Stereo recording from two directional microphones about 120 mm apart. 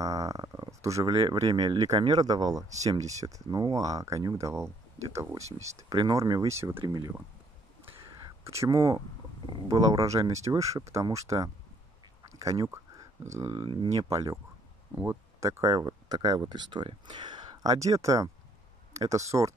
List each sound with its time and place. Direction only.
0.0 s a sound: 30° right (ahead or behind)
1.3 s speech: 35° right (ahead or behind)
8.5 s speech: 25° right (ahead or behind)
12.4 s a sound: 25° right (ahead or behind)
13.5 s speech: 40° right (ahead or behind)
14.0 s speech: 25° right (ahead or behind)
15.7 s speech: 35° right (ahead or behind)
17.7 s speech: 25° right (ahead or behind)